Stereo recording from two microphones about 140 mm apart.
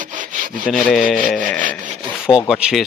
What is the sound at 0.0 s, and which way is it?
Sawing, 70° right (ahead or behind).